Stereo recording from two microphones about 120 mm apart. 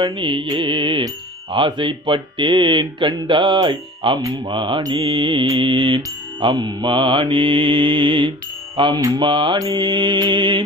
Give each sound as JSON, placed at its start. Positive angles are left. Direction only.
{"t": 0.0, "sound": "mantra", "side_deg": -45}